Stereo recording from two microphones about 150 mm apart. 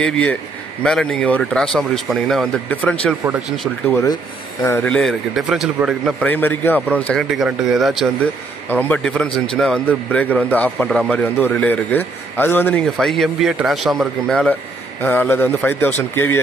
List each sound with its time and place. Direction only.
0.0 s a man's voice: 5° left (ahead or behind)
3.8 s a man's voice: 20° left (ahead or behind); by 6.1 s 5° right (ahead or behind)
6.2 s a man's voice: 10° left (ahead or behind)
7.2 s speech: 5° right (ahead or behind)
8.6 s a man's voice: 10° left (ahead or behind)
12.8 s a man's voice: centre (ahead or behind)